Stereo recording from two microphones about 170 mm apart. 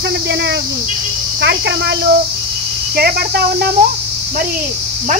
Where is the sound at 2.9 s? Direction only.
65° right (ahead or behind).